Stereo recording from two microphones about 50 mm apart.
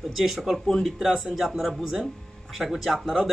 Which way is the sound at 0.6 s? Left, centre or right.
Centre.